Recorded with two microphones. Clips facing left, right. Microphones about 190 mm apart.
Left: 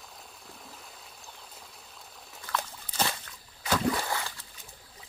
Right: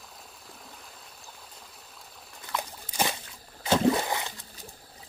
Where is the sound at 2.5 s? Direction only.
15° right (ahead or behind).